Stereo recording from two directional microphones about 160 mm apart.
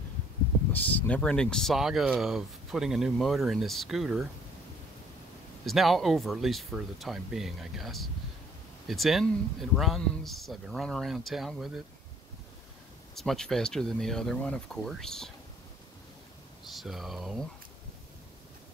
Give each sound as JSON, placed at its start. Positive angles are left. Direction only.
{"t": 0.7, "sound": "speech", "side_deg": 10}
{"t": 5.7, "sound": "speech", "side_deg": 0}
{"t": 13.1, "sound": "speech", "side_deg": 0}
{"t": 16.6, "sound": "speech", "side_deg": 0}